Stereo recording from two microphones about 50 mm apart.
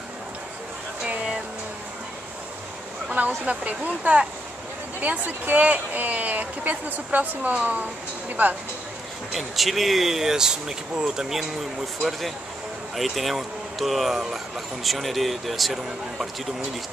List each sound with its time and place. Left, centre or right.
3.1 s speech: right
9.3 s speech: centre
12.9 s speech: centre